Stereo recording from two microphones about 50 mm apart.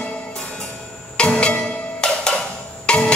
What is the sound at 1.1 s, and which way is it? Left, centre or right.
Music, left.